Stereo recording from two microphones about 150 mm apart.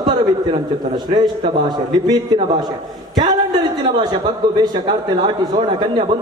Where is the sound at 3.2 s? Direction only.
30° right (ahead or behind).